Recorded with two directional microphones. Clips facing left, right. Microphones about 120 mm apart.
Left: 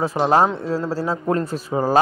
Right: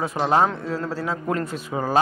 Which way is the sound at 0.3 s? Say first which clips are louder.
Left 2 dB; 35° left (ahead or behind).